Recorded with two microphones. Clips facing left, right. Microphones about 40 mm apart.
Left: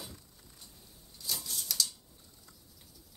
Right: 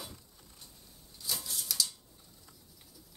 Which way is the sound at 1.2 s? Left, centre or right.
Centre.